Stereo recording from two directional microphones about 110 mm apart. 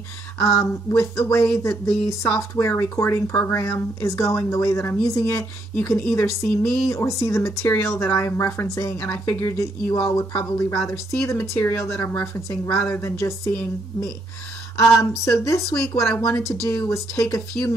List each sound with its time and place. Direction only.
0.4 s speech: 25° left (ahead or behind)
14.8 s speech: 25° left (ahead or behind)